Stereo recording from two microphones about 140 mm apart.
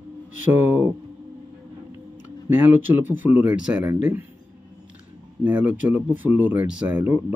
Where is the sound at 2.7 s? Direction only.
15° right (ahead or behind).